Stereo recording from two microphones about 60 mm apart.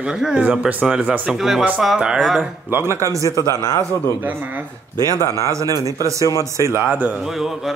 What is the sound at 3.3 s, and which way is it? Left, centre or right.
Speech, left.